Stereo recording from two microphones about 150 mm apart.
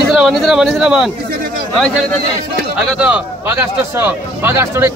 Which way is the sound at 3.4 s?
15° right (ahead or behind).